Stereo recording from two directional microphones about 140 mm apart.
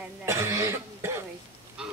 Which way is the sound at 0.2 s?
20° right (ahead or behind).